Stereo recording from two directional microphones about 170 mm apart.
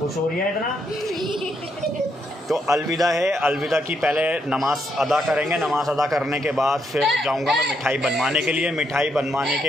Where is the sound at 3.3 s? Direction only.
5° right (ahead or behind).